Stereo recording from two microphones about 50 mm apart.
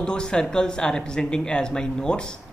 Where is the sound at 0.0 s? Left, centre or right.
Centre.